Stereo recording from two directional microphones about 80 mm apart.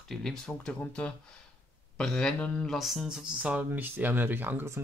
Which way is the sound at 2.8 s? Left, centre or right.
Centre.